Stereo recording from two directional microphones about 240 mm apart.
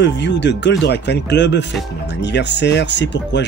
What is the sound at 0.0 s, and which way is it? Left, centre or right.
Speech, left.